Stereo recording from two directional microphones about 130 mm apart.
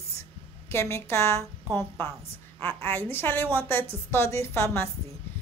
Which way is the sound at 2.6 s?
15° left (ahead or behind).